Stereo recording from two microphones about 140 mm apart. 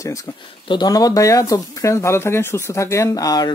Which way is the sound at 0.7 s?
30° left (ahead or behind).